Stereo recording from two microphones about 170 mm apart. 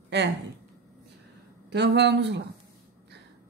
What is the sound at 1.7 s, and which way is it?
Speech, 85° right.